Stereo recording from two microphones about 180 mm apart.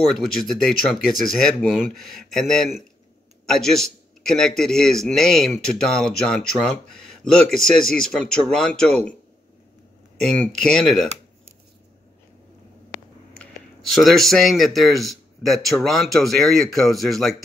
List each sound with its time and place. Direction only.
0.1 s a man's voice: centre (ahead or behind)
10.2 s a man's voice: 5° left (ahead or behind)
13.4 s a man's voice: centre (ahead or behind)